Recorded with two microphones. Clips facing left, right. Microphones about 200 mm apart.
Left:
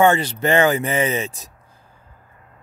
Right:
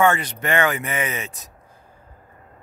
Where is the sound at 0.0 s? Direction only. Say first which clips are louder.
Left 3 dB; 30° left (ahead or behind).